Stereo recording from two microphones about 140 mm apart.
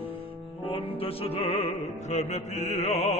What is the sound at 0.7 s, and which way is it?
Music, 45° left (ahead or behind).